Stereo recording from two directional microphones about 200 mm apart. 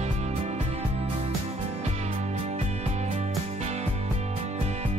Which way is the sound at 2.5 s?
35° right (ahead or behind).